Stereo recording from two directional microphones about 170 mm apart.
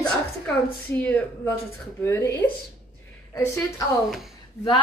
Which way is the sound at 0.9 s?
10° left (ahead or behind).